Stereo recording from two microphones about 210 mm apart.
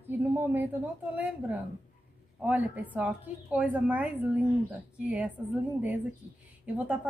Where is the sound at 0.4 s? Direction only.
10° right (ahead or behind).